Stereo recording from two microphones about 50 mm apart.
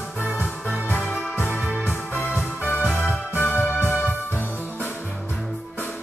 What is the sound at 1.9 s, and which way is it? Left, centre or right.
Music, left.